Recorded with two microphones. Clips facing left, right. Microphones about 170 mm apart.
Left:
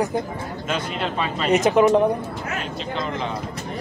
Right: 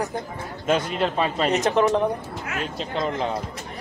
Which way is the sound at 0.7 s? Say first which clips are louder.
Right 5 dB; 40° right (ahead or behind).